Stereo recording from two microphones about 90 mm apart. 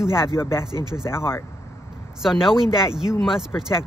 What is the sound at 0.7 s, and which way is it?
Speech, 50° right (ahead or behind).